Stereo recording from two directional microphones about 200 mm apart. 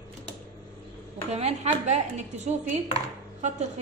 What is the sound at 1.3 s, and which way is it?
A woman's voice, 35° right (ahead or behind).